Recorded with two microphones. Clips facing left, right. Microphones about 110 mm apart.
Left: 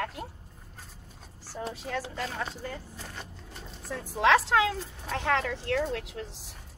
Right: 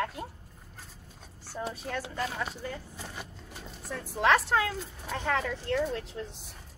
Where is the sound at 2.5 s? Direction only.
10° right (ahead or behind).